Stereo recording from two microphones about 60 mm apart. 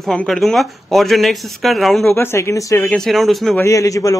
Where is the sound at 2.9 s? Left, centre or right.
Centre.